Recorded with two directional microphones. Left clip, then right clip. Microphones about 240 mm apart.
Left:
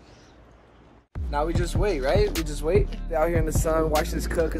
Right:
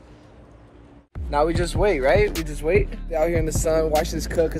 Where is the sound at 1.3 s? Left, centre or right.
Centre.